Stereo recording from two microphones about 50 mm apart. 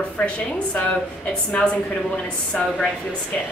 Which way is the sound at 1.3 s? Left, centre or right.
Left.